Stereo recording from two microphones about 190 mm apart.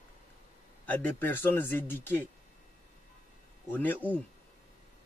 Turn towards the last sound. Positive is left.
turn(degrees=10)  # may be behind; listen again after turning